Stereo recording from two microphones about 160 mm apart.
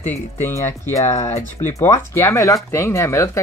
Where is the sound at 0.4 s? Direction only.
15° left (ahead or behind).